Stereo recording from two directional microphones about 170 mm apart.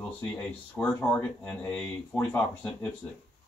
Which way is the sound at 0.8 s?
5° left (ahead or behind).